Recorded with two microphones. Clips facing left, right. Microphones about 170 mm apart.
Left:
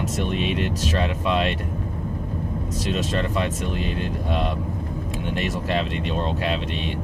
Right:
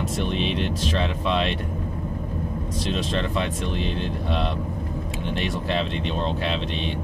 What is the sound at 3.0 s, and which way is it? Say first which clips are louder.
Speech: left 2 dB; 45° left (ahead or behind).